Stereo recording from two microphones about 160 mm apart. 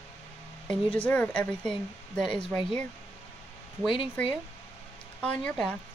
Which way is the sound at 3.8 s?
30° left (ahead or behind).